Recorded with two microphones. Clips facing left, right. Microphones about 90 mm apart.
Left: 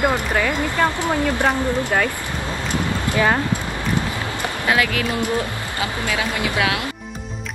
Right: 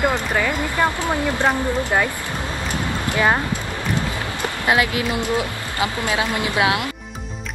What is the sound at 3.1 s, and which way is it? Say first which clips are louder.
Speech: even; 25° right (ahead or behind).